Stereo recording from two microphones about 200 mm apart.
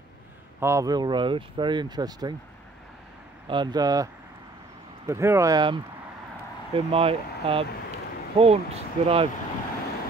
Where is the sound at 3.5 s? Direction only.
20° right (ahead or behind).